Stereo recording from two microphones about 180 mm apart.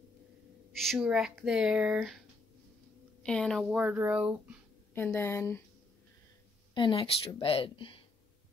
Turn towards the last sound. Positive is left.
turn(degrees=30)  # may be behind; listen again after turning